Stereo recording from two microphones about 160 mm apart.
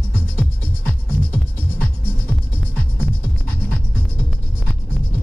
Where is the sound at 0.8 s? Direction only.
10° left (ahead or behind).